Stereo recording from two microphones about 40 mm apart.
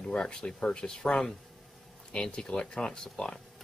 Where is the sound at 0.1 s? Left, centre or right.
Centre.